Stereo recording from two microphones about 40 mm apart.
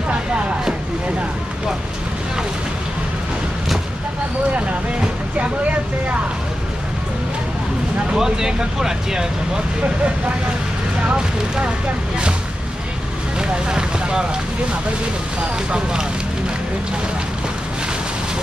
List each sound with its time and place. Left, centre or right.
8.1 s speech: centre
11.1 s speech: right
13.4 s vehicle: centre
15.4 s speech: centre